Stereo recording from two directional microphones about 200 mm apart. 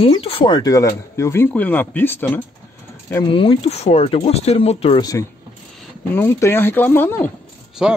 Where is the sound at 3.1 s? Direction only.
20° left (ahead or behind).